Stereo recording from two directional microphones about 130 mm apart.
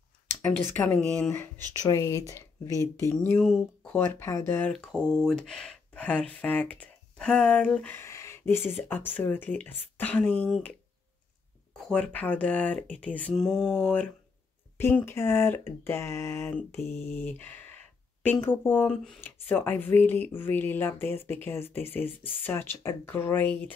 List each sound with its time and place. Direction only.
0.3 s speech: 15° left (ahead or behind)
1.7 s speech: 25° left (ahead or behind)
4.7 s speech: 5° left (ahead or behind)
11.7 s speech: 5° left (ahead or behind)